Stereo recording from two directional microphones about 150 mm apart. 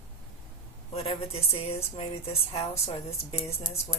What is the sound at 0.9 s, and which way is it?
Speech, 40° left (ahead or behind).